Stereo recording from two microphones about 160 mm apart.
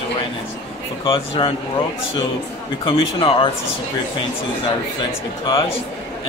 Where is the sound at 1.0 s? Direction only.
30° left (ahead or behind).